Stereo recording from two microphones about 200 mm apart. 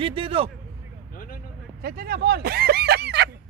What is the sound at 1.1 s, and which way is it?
Vehicle, 45° left (ahead or behind).